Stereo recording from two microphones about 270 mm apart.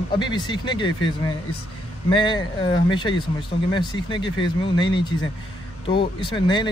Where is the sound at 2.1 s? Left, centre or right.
Centre.